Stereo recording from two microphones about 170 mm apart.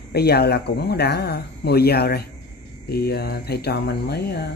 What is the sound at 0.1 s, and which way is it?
Speech, 70° left (ahead or behind).